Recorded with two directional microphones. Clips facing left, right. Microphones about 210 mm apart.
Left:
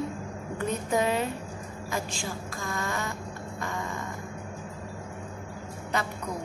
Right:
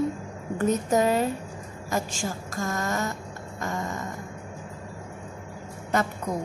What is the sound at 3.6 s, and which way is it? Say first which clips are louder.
Music: right 4 dB; 40° right (ahead or behind).